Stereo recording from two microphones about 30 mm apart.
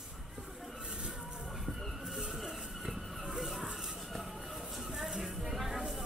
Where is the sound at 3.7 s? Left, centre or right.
Centre.